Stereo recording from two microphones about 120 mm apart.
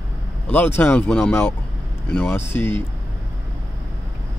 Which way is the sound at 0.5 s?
15° left (ahead or behind).